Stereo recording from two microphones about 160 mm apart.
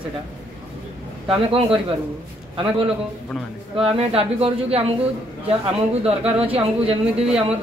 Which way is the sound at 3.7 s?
35° right (ahead or behind).